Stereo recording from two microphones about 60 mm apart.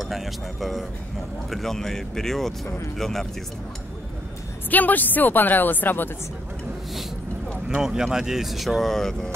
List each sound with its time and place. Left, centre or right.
0.0 s speech: centre
4.6 s speech: left
7.6 s speech: centre